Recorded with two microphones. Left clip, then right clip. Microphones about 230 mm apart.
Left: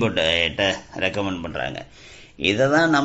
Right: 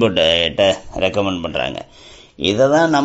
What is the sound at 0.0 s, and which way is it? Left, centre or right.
Speech, right.